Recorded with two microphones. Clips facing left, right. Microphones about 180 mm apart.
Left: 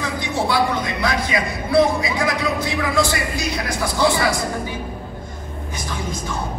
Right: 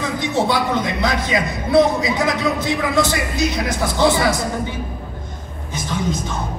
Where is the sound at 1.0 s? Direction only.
20° right (ahead or behind).